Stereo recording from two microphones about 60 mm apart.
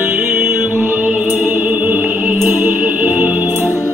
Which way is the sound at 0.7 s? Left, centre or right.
Right.